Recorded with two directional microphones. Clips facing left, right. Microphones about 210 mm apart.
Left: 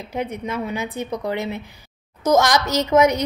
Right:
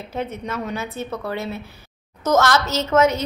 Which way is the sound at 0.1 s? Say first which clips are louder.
Left 2 dB; 15° left (ahead or behind).